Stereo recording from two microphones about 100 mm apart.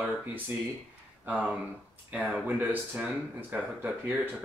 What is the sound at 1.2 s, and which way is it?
Speech, 15° right (ahead or behind).